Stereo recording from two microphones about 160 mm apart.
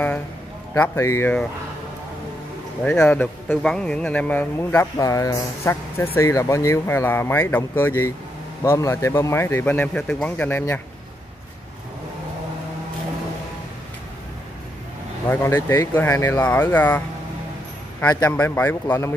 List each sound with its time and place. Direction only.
0.7 s a man's voice: 15° left (ahead or behind)
2.8 s a man's voice: 5° left (ahead or behind)
15.2 s a man's voice: 15° left (ahead or behind)
18.0 s a man's voice: 15° left (ahead or behind)